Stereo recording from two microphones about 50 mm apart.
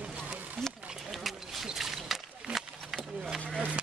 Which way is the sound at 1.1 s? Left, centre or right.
Centre.